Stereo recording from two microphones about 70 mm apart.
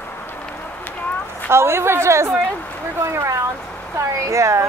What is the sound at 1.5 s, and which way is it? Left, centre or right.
A woman's voice, right.